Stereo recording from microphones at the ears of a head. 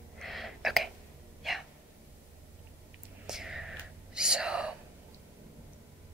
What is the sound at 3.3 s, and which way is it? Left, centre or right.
Whispering, centre.